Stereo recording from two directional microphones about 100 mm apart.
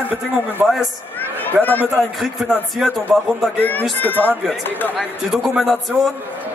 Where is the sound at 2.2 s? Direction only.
Centre (ahead or behind).